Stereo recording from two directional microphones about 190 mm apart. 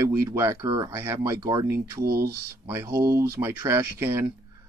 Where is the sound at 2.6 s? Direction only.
15° right (ahead or behind).